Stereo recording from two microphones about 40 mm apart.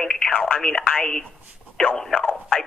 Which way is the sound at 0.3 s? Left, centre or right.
Left.